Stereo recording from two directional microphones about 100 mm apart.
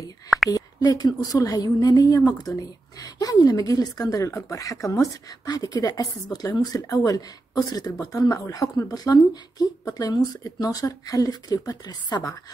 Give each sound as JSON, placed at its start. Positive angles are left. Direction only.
{"t": 0.5, "sound": "speech", "side_deg": 40}